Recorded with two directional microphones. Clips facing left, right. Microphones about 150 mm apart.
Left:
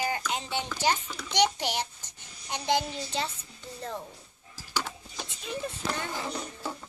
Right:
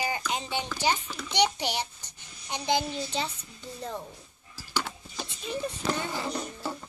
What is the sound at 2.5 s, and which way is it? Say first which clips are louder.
A child's voice: even; 5° right (ahead or behind).